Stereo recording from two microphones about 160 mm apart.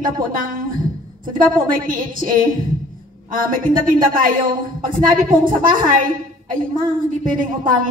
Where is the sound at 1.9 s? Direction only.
60° right (ahead or behind).